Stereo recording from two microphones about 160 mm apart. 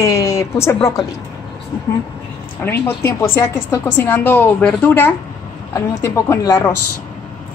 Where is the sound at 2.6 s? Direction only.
15° left (ahead or behind).